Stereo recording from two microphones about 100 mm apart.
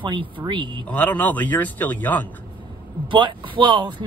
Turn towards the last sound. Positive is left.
turn(degrees=-50)  # may be behind; listen again after turning